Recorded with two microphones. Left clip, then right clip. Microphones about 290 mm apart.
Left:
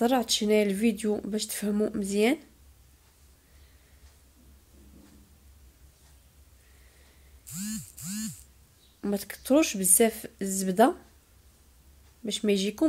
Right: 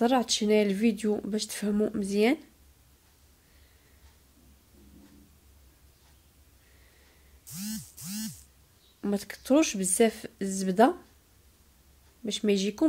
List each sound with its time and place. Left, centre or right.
0.0 s speech: centre
9.0 s speech: centre
12.3 s speech: centre